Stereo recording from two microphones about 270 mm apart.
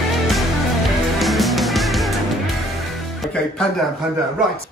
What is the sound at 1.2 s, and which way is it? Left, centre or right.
Music, centre.